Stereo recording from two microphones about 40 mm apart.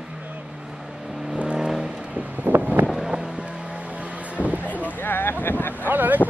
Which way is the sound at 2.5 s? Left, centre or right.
Right.